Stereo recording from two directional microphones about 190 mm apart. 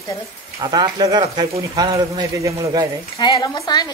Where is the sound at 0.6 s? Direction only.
25° right (ahead or behind).